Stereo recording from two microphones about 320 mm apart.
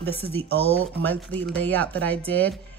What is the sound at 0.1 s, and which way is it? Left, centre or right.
Speech, centre.